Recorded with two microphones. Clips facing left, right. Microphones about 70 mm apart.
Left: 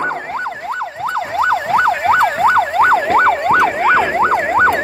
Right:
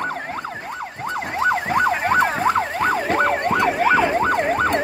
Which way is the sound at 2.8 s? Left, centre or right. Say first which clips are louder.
Left 9 dB; left.